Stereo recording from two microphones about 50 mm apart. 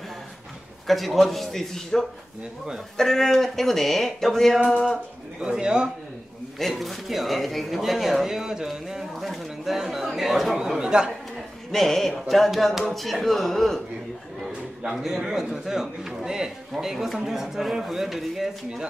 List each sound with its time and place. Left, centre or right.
0.8 s speech: centre
5.4 s a man's voice: centre
6.6 s speech: centre
11.7 s speech: centre
14.9 s a man's voice: centre